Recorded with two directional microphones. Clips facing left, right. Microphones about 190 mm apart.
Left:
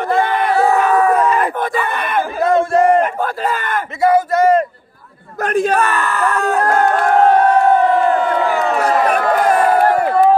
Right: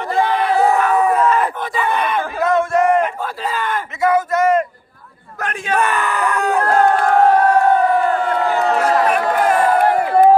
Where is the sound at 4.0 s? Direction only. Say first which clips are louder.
Left 3 dB; 35° left (ahead or behind).